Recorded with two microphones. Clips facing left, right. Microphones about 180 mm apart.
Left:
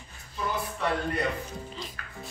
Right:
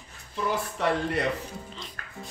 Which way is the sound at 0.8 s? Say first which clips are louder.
Right 3 dB; 80° right.